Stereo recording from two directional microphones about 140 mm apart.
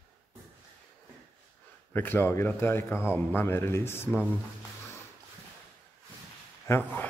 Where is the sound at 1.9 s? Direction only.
15° left (ahead or behind).